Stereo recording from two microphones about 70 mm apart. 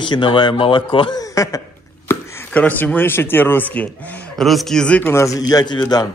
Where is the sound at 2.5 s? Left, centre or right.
Left.